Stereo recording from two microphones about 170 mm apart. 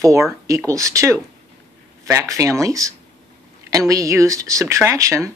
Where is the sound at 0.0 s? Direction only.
20° right (ahead or behind).